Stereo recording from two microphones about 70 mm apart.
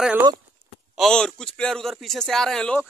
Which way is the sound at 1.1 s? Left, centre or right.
Centre.